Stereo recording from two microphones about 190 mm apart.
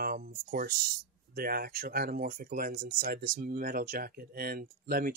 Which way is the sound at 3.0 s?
60° right (ahead or behind).